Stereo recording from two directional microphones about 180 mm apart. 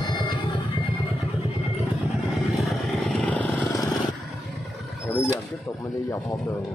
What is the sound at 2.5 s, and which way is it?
Vehicle, 5° left (ahead or behind).